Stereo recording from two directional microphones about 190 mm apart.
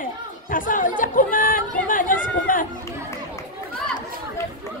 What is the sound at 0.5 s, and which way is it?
Speech, 45° left (ahead or behind).